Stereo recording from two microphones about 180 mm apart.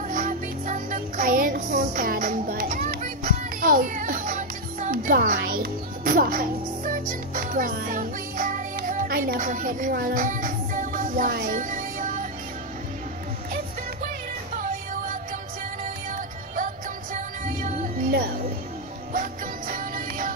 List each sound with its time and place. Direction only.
0.1 s music: 45° right (ahead or behind)
15.8 s music: 50° right (ahead or behind)
19.1 s music: 45° right (ahead or behind)